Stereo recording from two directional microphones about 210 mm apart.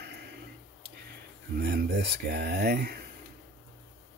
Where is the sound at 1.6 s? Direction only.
50° right (ahead or behind).